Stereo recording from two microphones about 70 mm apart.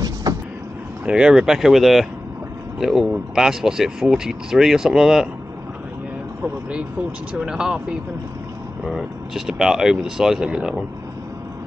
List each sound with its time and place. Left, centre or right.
0.0 s vehicle: right
1.0 s speech: centre
6.4 s speech: centre
8.8 s speech: centre